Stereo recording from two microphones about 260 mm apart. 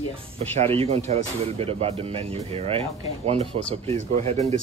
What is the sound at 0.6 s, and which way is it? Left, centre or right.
Speech, right.